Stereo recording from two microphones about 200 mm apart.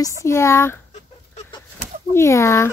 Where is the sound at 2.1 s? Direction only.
15° left (ahead or behind).